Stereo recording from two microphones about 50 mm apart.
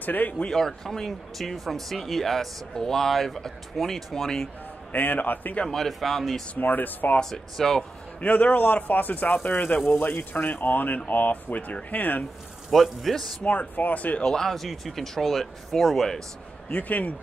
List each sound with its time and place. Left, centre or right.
0.0 s speech: left
0.5 s speech: centre
4.9 s speech: left
5.7 s speech: centre
6.5 s speech: left
7.2 s speech: centre
8.2 s speech: left
12.7 s speech: centre
13.4 s speech: left
14.2 s speech: centre
16.6 s speech: left